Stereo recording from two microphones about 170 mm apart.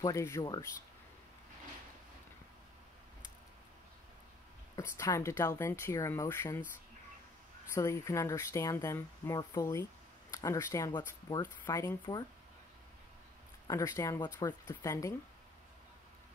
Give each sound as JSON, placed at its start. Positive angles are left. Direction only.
{"t": 0.0, "sound": "speech", "side_deg": 15}
{"t": 4.7, "sound": "speech", "side_deg": 15}
{"t": 7.7, "sound": "speech", "side_deg": 15}
{"t": 13.7, "sound": "speech", "side_deg": 20}